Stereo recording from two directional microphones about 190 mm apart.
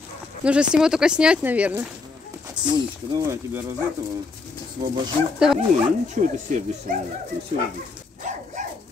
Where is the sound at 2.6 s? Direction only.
25° right (ahead or behind).